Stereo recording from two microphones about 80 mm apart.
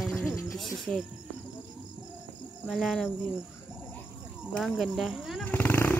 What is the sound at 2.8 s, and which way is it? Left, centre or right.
Speech, centre.